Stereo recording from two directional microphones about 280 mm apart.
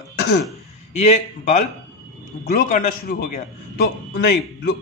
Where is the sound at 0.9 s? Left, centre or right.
Left.